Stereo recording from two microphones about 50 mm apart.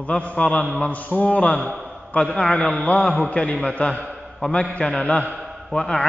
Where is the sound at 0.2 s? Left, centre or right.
Left.